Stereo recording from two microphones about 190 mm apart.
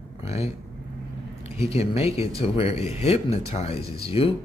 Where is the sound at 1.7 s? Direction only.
30° left (ahead or behind).